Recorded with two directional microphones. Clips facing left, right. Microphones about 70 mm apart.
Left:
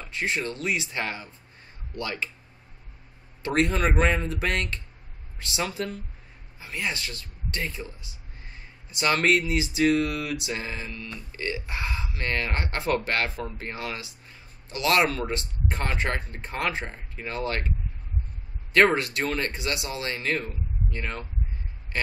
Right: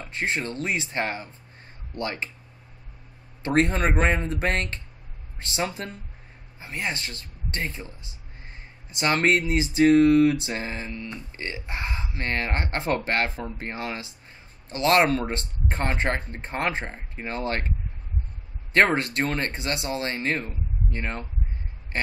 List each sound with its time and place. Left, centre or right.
0.0 s speech: right
3.4 s speech: right
18.9 s speech: right
21.9 s a sound: right